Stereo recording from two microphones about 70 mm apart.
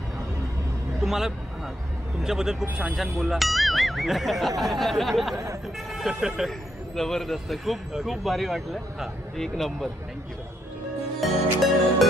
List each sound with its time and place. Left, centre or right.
1.0 s vehicle: centre
2.2 s speech: centre
5.3 s speech: right
5.9 s speech: centre
7.0 s speech: centre
11.1 s speech: centre